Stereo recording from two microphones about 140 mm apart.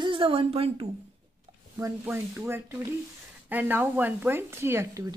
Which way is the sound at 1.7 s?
15° right (ahead or behind).